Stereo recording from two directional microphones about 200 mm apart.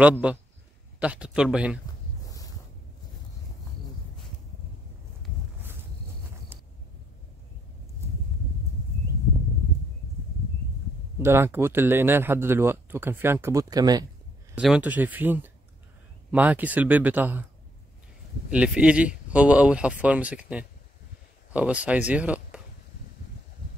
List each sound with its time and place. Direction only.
0.2 s speech: 5° right (ahead or behind)
2.2 s a sound: 15° left (ahead or behind)
6.5 s a sound: 10° right (ahead or behind)
11.1 s speech: 15° right (ahead or behind)
14.5 s speech: 5° right (ahead or behind)
18.5 s speech: 5° right (ahead or behind)